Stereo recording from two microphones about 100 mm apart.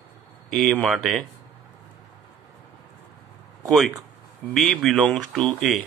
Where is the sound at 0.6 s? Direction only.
Centre (ahead or behind).